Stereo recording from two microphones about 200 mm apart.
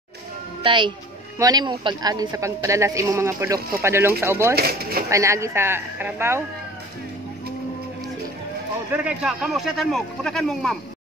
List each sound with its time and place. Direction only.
0.7 s a woman's voice: 25° right (ahead or behind)
4.6 s speech: 50° right (ahead or behind)
5.1 s a woman's voice: 15° right (ahead or behind)
8.9 s speech: 5° right (ahead or behind)